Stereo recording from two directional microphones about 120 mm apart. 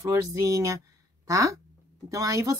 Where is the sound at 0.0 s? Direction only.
25° right (ahead or behind).